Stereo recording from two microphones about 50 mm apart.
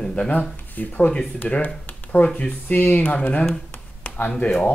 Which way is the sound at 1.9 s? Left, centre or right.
Left.